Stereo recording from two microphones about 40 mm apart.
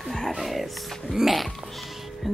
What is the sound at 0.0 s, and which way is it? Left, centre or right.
Music, centre.